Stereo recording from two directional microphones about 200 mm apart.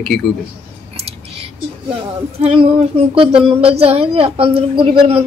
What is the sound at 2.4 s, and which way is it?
A woman's voice, 25° right (ahead or behind).